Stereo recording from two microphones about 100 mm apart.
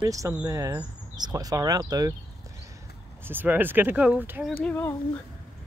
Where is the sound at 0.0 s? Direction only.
35° right (ahead or behind).